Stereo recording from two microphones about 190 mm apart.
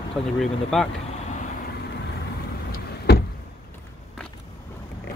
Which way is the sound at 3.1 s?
60° left (ahead or behind).